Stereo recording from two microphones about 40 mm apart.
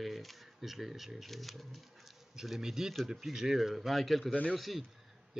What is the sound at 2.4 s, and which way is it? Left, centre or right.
A man's voice, centre.